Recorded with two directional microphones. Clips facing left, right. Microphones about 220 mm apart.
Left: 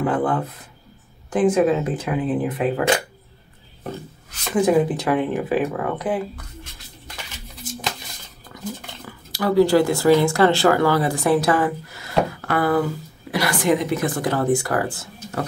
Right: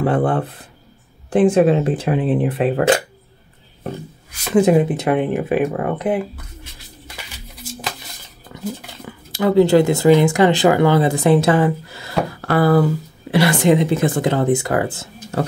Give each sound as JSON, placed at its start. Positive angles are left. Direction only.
{"t": 0.0, "sound": "speech", "side_deg": -30}
{"t": 4.6, "sound": "speech", "side_deg": -25}
{"t": 9.0, "sound": "speech", "side_deg": -20}